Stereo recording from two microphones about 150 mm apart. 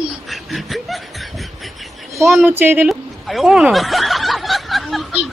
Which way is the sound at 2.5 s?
10° right (ahead or behind).